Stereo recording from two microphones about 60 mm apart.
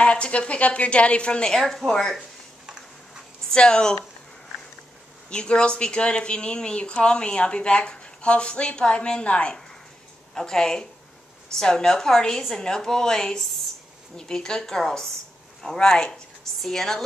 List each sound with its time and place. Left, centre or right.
0.0 s a woman's voice: left
1.5 s speech: centre
3.4 s speech: centre
5.3 s speech: centre